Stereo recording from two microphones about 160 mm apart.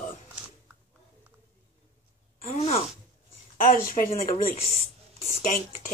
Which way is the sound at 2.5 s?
40° left (ahead or behind).